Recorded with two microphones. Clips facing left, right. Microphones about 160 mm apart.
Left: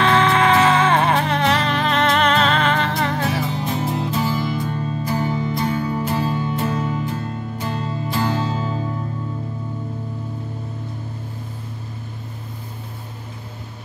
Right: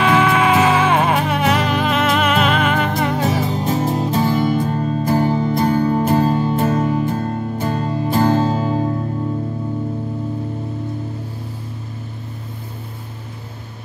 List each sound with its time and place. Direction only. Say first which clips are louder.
0.0 s music: right 1 dB; 10° right (ahead or behind)
3.3 s music: right 4 dB; 40° right (ahead or behind)